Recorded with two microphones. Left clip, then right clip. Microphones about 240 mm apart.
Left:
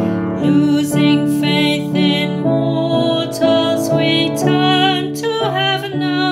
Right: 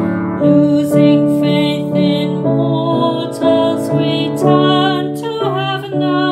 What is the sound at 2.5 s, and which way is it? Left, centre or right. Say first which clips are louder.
Music: even; centre.